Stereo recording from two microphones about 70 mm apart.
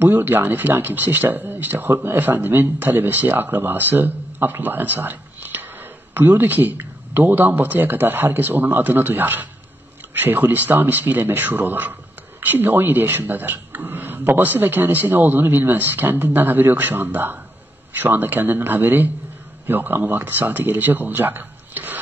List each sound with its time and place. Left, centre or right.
0.0 s speech: right